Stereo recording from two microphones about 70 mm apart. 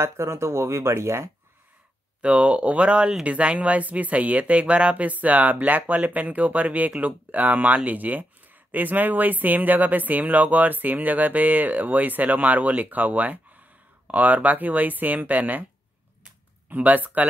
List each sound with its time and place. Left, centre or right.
0.0 s speech: right
2.2 s speech: centre
16.6 s speech: right